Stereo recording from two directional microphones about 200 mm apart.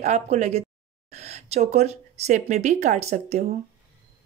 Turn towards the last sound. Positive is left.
turn(degrees=-35)  # may be behind; listen again after turning